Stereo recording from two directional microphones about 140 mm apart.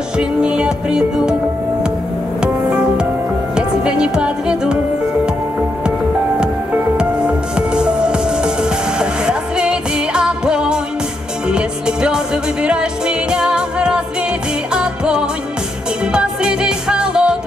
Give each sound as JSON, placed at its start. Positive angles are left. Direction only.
{"t": 0.2, "sound": "music", "side_deg": -5}
{"t": 2.4, "sound": "music", "side_deg": -5}
{"t": 5.9, "sound": "music", "side_deg": -5}